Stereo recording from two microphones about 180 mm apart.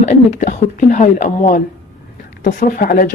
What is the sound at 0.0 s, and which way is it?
Speech, 40° left (ahead or behind).